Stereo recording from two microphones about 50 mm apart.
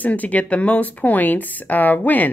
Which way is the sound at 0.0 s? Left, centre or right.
Left.